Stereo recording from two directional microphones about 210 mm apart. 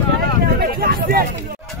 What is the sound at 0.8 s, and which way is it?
Speech, 45° right (ahead or behind).